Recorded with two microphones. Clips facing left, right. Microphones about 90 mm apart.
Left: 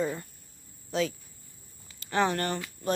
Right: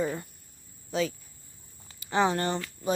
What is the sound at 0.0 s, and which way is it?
Cricket, 15° right (ahead or behind).